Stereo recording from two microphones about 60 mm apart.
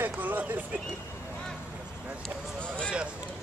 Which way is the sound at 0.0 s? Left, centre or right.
Right.